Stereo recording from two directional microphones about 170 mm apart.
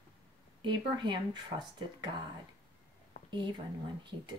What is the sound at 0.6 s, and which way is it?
Speech, 25° right (ahead or behind).